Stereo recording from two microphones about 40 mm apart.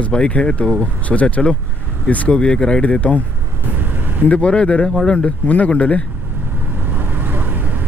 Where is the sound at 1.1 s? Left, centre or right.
Centre.